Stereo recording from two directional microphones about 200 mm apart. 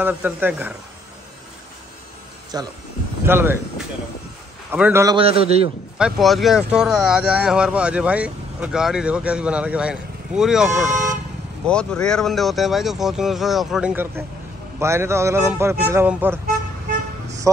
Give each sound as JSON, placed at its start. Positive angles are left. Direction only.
{"t": 0.0, "sound": "speech", "side_deg": -10}
{"t": 2.5, "sound": "a man's voice", "side_deg": -20}
{"t": 5.1, "sound": "a man's voice", "side_deg": -30}
{"t": 5.9, "sound": "speech", "side_deg": 0}
{"t": 10.9, "sound": "speech", "side_deg": -40}
{"t": 11.6, "sound": "speech", "side_deg": 5}